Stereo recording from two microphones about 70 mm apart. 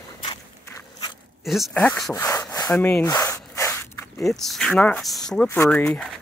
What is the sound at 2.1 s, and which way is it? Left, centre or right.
Wood, left.